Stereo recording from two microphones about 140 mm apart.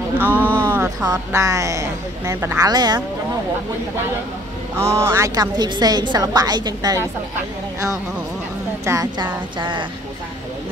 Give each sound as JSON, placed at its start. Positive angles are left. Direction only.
{"t": 0.2, "sound": "speech", "side_deg": -15}
{"t": 0.6, "sound": "a sound", "side_deg": -15}
{"t": 1.1, "sound": "a woman's voice", "side_deg": -20}
{"t": 4.7, "sound": "a woman's voice", "side_deg": -20}
{"t": 8.8, "sound": "speech", "side_deg": -25}